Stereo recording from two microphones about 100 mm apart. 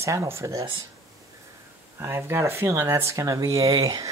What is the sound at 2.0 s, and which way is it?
Speech, 25° right (ahead or behind).